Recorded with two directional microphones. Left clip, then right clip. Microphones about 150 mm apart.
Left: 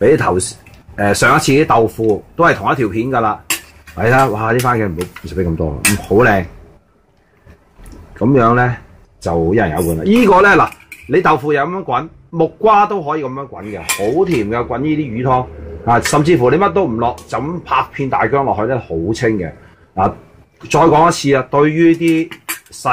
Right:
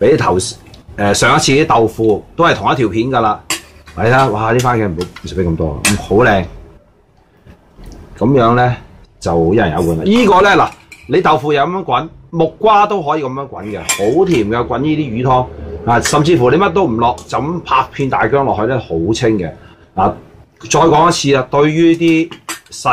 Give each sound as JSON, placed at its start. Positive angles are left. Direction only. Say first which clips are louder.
{"t": 0.0, "sound": "a man's voice", "louder": "right 1 dB", "side_deg": 35}
{"t": 8.2, "sound": "a man's voice", "louder": "right 1 dB", "side_deg": 30}
{"t": 20.6, "sound": "a man's voice", "louder": "even", "side_deg": 25}